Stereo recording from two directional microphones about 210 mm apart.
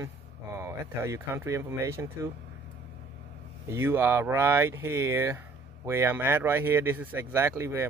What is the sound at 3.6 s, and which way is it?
Speech, 10° right (ahead or behind).